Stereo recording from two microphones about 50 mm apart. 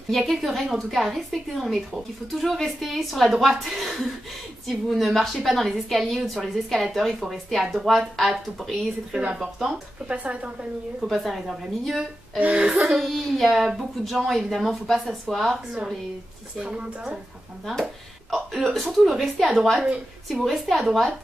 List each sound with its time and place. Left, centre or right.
0.3 s a woman's voice: centre
9.2 s a woman's voice: centre
10.0 s a woman's voice: right
11.1 s a woman's voice: centre
12.4 s a woman's voice: right
12.8 s a woman's voice: centre
15.5 s a woman's voice: centre
18.3 s a woman's voice: centre
18.8 s a woman's voice: centre